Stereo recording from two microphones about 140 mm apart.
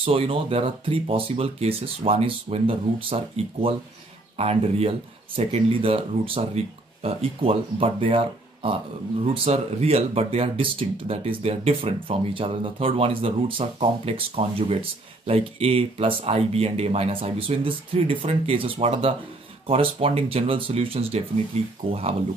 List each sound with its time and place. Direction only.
0.0 s speech: 40° right (ahead or behind)